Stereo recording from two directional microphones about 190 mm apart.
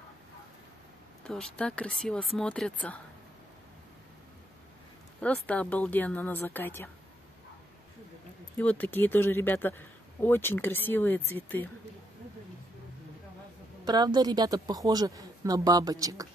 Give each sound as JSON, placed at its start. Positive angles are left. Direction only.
{"t": 1.2, "sound": "speech", "side_deg": 5}
{"t": 5.2, "sound": "speech", "side_deg": 5}
{"t": 8.5, "sound": "speech", "side_deg": 10}
{"t": 13.8, "sound": "speech", "side_deg": -20}